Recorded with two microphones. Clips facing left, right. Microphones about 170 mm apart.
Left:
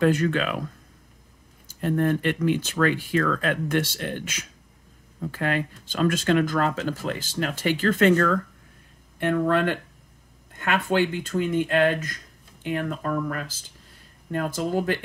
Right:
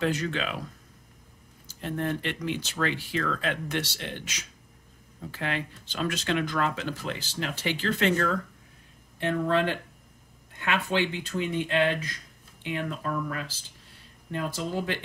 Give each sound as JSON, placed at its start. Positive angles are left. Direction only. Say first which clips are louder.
{"t": 0.0, "sound": "speech", "louder": "left 7 dB", "side_deg": 55}
{"t": 1.8, "sound": "speech", "louder": "left 7 dB", "side_deg": 50}